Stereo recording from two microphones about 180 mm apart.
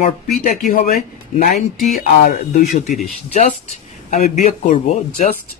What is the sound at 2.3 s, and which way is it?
Speech, 40° left (ahead or behind).